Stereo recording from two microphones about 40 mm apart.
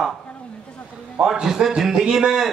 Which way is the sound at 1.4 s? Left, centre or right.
Centre.